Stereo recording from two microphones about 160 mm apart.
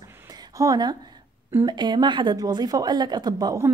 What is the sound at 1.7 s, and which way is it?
A woman's voice, 25° right (ahead or behind).